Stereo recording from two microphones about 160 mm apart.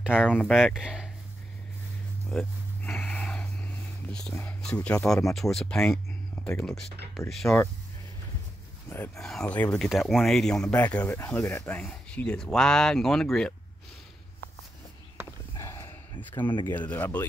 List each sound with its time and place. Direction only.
0.3 s speech: 5° left (ahead or behind)
2.3 s speech: 5° left (ahead or behind)
2.9 s snort: 5° left (ahead or behind)
4.3 s speech: 10° left (ahead or behind)
8.8 s speech: 15° left (ahead or behind)
9.1 s speech: centre (ahead or behind)
15.5 s a sound: 20° left (ahead or behind)
16.4 s speech: 25° left (ahead or behind)
16.9 s speech: 10° left (ahead or behind)